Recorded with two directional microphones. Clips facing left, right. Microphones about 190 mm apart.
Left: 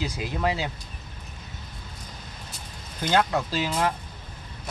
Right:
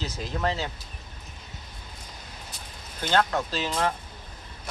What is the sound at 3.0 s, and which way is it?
Speech, 10° left (ahead or behind).